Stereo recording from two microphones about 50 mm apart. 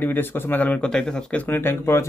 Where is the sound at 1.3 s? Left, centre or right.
Left.